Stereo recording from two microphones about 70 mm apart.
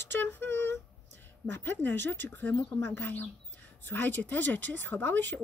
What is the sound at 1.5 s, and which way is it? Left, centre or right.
Speech, left.